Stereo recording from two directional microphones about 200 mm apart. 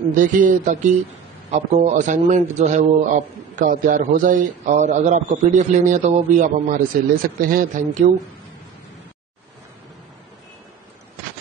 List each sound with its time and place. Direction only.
0.1 s a man's voice: 40° right (ahead or behind)